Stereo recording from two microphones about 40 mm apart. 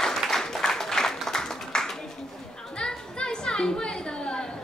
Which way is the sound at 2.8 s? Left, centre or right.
Centre.